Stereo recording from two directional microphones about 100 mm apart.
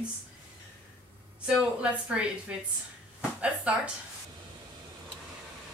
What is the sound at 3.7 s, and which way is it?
Speech, 15° right (ahead or behind).